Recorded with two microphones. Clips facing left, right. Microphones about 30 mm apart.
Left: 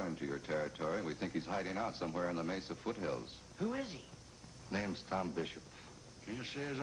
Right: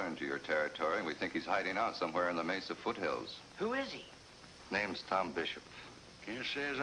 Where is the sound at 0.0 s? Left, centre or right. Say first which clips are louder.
Right 2 dB; right.